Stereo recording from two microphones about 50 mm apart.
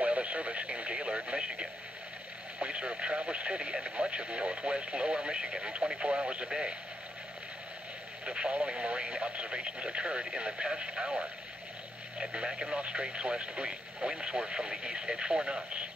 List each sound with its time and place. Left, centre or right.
0.0 s speech: right
8.3 s speech: right